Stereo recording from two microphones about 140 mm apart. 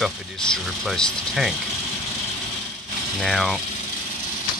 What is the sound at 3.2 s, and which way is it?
Speech, centre (ahead or behind).